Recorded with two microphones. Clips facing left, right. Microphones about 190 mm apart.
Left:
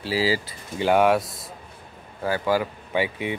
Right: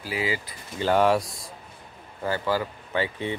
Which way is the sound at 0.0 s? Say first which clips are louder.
Left 5 dB; 30° left (ahead or behind).